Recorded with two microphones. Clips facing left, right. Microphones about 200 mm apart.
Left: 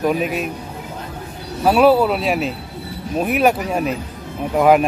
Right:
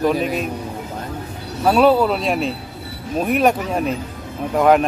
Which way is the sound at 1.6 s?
5° left (ahead or behind).